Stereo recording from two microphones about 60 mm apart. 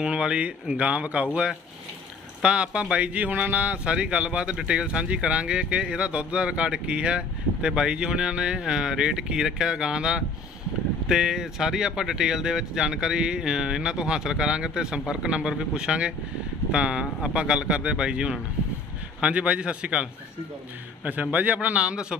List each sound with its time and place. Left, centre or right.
0.0 s speech: centre